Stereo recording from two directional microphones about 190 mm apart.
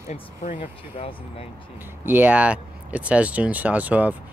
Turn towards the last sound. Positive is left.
turn(degrees=-10)  # may be behind; listen again after turning